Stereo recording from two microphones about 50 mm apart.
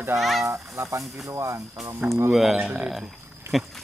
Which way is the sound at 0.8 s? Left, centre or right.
Right.